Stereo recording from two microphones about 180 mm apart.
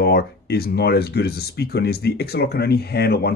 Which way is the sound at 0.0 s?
60° left (ahead or behind).